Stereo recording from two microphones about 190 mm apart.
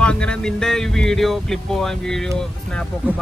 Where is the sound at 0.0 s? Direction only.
5° left (ahead or behind).